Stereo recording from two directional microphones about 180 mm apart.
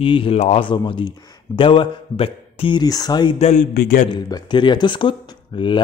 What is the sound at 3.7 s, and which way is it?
Speech, 55° left (ahead or behind).